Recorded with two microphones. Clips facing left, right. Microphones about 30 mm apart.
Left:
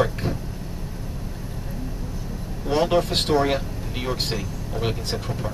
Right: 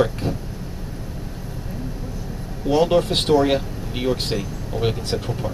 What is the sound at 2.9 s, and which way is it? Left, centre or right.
Speech, centre.